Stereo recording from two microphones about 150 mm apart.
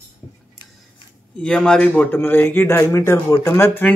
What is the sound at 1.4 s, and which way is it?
Speech, 5° left (ahead or behind).